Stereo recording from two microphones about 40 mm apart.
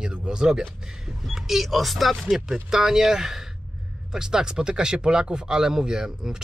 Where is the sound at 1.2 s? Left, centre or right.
Centre.